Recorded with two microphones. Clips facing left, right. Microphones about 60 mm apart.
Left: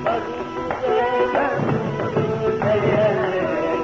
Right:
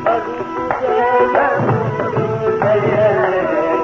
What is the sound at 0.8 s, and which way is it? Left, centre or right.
Music, centre.